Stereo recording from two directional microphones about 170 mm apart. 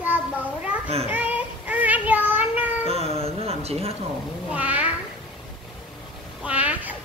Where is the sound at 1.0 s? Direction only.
10° right (ahead or behind).